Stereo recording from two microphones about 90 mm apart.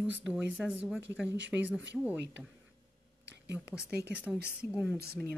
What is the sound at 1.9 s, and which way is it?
Speech, 15° right (ahead or behind).